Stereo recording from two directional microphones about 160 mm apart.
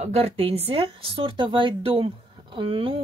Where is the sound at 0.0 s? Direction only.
40° right (ahead or behind).